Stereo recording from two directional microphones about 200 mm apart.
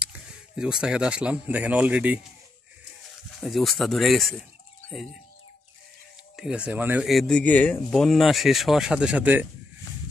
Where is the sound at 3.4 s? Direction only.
Centre (ahead or behind).